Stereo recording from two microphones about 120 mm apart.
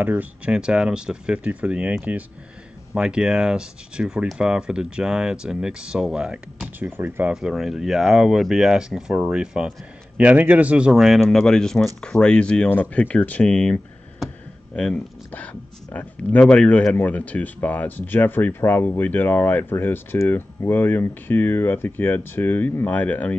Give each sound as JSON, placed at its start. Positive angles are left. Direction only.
{"t": 0.0, "sound": "speech", "side_deg": -15}
{"t": 7.3, "sound": "speech", "side_deg": -5}
{"t": 14.8, "sound": "speech", "side_deg": 10}